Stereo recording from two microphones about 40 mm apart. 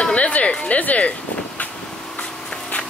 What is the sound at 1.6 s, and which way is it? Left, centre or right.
Vehicle, left.